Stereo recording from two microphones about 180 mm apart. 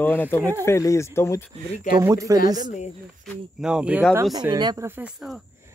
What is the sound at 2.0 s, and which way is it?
Speech, 15° right (ahead or behind).